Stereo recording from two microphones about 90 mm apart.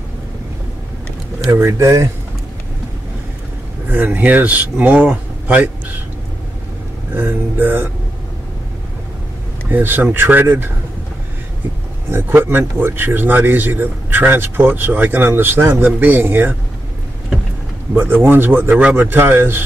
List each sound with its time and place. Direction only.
1.5 s speech: 30° right (ahead or behind)
3.9 s speech: 20° right (ahead or behind)
7.2 s speech: 20° right (ahead or behind)
9.7 s speech: 20° right (ahead or behind)
12.1 s speech: 25° right (ahead or behind)
17.9 s speech: 20° right (ahead or behind)